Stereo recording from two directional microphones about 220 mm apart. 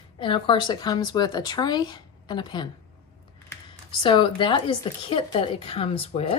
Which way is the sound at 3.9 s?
20° left (ahead or behind).